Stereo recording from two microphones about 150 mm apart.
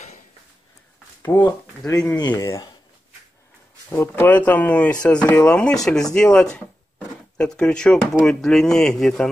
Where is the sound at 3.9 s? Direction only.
15° left (ahead or behind).